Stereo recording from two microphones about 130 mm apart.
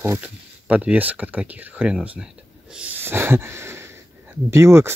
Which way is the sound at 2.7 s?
10° right (ahead or behind).